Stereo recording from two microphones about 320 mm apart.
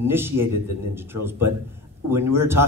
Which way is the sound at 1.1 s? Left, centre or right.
Right.